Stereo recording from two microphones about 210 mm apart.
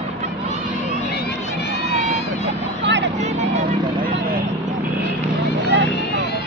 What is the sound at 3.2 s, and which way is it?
Vehicle, 35° right (ahead or behind).